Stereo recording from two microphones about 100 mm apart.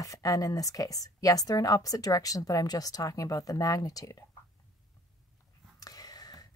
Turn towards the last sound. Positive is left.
turn(degrees=40)  # may be behind; listen again after turning